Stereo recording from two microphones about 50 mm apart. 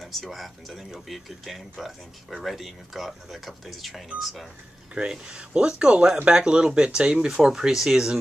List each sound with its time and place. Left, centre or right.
0.0 s speech: centre
4.9 s speech: centre